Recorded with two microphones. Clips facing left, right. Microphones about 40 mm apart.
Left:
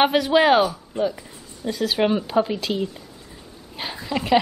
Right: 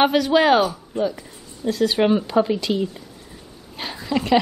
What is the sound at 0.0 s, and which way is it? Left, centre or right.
Speech, centre.